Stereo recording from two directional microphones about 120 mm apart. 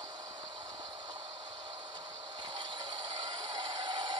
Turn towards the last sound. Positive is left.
turn(degrees=-35)  # may be behind; listen again after turning